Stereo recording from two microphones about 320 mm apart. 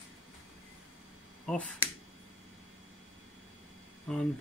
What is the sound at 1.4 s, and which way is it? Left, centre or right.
Speech, centre.